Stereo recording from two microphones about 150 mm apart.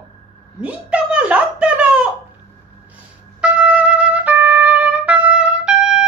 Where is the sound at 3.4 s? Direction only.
10° right (ahead or behind).